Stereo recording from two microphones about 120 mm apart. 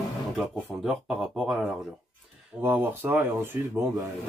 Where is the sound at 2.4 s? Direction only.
15° right (ahead or behind).